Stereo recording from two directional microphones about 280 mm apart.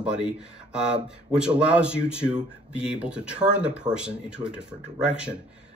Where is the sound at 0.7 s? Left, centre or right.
Centre.